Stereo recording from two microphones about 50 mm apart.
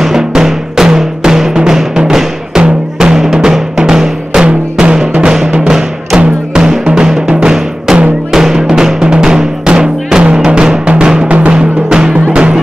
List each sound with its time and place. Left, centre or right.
0.0 s music: centre
3.0 s drum: centre
5.2 s music: centre
8.3 s drum: centre
10.2 s music: centre
11.2 s music: right
11.5 s music: centre